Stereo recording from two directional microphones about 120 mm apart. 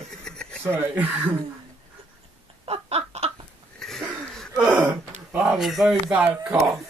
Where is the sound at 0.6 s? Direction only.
20° right (ahead or behind).